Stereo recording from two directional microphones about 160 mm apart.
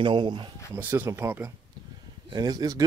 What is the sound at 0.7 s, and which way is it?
Speech, 15° right (ahead or behind).